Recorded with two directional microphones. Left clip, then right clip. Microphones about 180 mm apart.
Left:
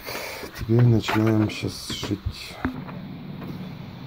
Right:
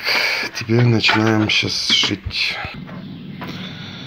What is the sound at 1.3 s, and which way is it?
Speech, 15° left (ahead or behind).